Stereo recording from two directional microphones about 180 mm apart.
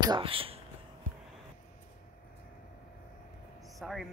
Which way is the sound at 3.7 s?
Centre (ahead or behind).